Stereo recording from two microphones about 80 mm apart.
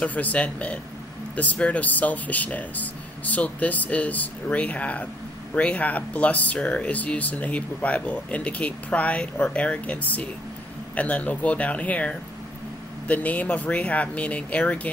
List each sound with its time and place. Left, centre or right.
0.0 s speech: centre